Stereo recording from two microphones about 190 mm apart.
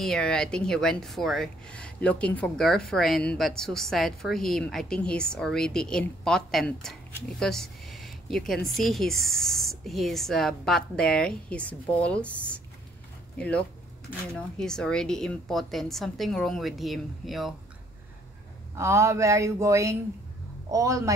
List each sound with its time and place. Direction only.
0.0 s speech: 5° left (ahead or behind)
18.8 s speech: 15° right (ahead or behind)